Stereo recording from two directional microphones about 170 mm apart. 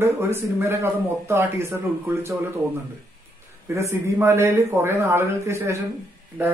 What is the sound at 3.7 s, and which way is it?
A man's voice, 15° right (ahead or behind).